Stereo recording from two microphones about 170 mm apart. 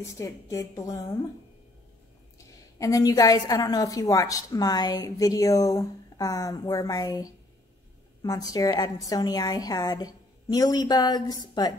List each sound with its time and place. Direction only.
0.2 s a woman's voice: 20° left (ahead or behind)
2.3 s a woman's voice: 20° left (ahead or behind)